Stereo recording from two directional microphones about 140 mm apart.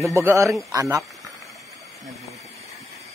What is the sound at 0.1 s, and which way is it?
Speech, 20° right (ahead or behind).